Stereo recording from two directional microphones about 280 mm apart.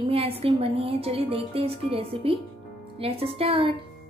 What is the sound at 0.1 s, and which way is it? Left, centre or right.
A woman's voice, centre.